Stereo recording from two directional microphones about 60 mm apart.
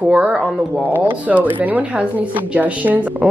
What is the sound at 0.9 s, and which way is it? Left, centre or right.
Speech, right.